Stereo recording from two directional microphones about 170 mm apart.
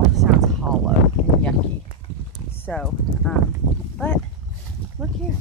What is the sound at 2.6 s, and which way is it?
Speech, 5° left (ahead or behind).